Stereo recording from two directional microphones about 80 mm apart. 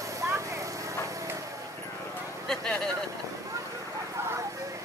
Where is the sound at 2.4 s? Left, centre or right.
Centre.